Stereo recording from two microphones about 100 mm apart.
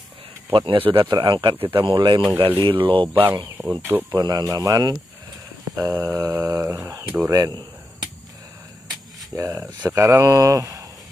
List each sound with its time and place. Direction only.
0.5 s speech: 55° right (ahead or behind)
3.1 s speech: 20° right (ahead or behind)
4.1 s speech: 40° right (ahead or behind)
7.3 s a sound: 40° right (ahead or behind)
9.3 s speech: 30° right (ahead or behind)